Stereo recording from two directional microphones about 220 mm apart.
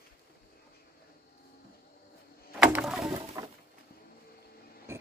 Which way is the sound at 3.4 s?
15° right (ahead or behind).